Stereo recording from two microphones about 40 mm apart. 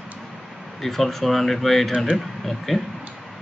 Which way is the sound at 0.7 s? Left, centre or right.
Centre.